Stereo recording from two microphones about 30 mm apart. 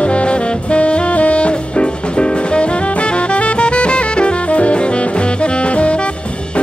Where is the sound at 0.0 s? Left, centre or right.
Left.